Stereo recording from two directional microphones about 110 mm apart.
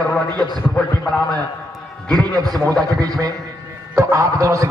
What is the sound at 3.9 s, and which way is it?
Speech, 30° right (ahead or behind).